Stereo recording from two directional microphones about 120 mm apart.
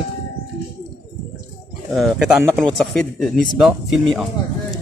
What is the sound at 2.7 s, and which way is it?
Speech, 10° left (ahead or behind).